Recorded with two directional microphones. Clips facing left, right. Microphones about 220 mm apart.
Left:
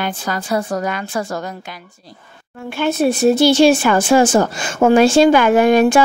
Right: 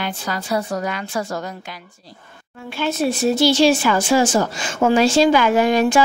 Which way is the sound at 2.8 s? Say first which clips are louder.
Left 5 dB; 55° left (ahead or behind).